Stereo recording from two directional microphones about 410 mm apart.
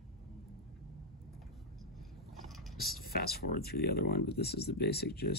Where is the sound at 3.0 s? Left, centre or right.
Left.